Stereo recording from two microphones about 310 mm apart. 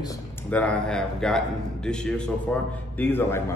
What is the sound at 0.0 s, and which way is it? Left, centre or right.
A man's voice, centre.